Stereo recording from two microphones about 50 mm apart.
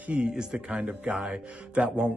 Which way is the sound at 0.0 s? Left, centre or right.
Right.